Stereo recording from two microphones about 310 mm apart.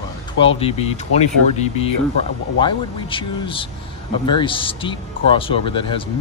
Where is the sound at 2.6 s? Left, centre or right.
Centre.